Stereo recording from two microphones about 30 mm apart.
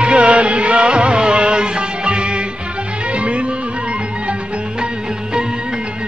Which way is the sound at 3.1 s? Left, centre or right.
Right.